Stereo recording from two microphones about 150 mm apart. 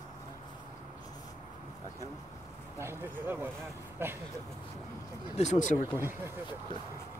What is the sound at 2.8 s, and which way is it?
Vehicle, 15° right (ahead or behind).